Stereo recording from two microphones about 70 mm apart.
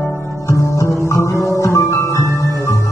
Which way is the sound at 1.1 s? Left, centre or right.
Left.